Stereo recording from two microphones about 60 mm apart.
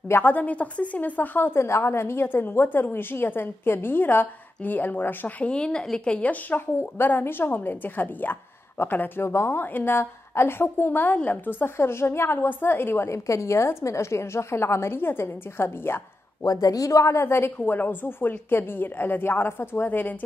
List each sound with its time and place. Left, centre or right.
0.2 s a woman's voice: left
5.4 s a woman's voice: centre
6.8 s a woman's voice: left
16.4 s a woman's voice: left